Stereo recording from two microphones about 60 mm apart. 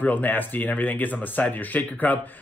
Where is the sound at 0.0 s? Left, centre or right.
Left.